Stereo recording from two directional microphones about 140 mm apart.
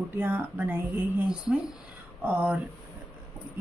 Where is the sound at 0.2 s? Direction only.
10° right (ahead or behind).